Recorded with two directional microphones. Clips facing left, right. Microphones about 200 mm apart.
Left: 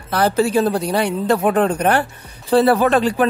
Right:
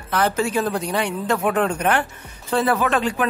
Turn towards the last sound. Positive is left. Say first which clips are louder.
# left 5 dB
turn(degrees=35)  # may be behind; listen again after turning